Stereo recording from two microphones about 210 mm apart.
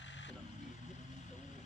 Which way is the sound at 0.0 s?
60° left (ahead or behind).